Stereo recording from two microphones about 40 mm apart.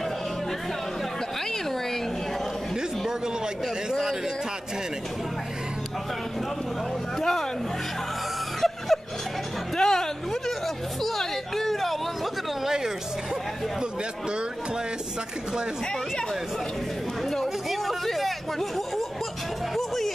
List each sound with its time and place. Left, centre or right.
3.6 s a man's voice: centre
7.2 s speech: centre
8.5 s snicker: centre
9.8 s a sound: centre
11.0 s speech: centre
12.6 s a man's voice: centre
17.6 s speech: centre